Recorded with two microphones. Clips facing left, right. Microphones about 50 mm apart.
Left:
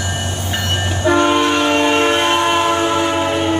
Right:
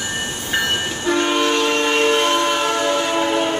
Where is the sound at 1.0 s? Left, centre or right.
Centre.